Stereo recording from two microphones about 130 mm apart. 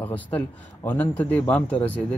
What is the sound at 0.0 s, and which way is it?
Speech, 15° left (ahead or behind).